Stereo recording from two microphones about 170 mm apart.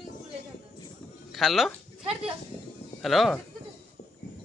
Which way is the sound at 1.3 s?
Centre (ahead or behind).